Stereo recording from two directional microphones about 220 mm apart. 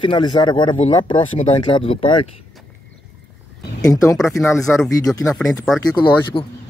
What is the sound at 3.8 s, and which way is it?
Speech, 15° left (ahead or behind).